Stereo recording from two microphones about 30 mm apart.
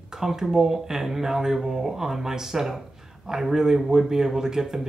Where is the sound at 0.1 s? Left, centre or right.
Centre.